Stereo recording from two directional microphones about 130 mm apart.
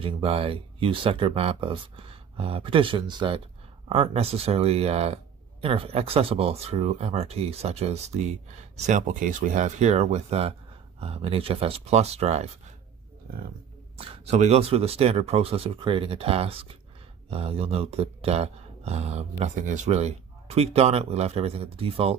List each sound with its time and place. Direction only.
0.0 s speech: 45° right (ahead or behind)
3.9 s speech: 50° right (ahead or behind)
13.9 s speech: 50° right (ahead or behind)
19.4 s speech: 75° right (ahead or behind); by 22.1 s 45° right (ahead or behind)